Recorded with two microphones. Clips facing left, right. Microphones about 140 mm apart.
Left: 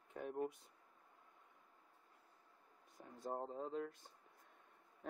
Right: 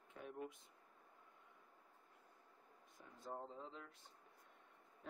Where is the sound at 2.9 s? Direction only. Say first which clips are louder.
Left 6 dB; 45° left (ahead or behind).